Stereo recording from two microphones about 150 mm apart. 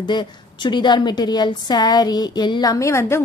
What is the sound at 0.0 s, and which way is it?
A woman's voice, 30° left (ahead or behind).